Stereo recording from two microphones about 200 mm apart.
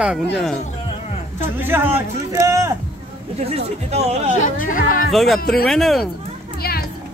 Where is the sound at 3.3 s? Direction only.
30° right (ahead or behind).